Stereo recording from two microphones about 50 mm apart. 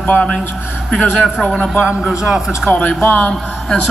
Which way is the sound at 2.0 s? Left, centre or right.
Centre.